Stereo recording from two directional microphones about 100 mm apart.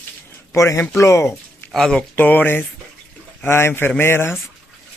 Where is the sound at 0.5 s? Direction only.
30° left (ahead or behind).